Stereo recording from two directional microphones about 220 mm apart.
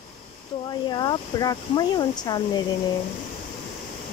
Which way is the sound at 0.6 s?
20° left (ahead or behind).